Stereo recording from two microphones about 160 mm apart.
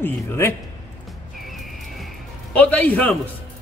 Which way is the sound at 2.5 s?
10° left (ahead or behind).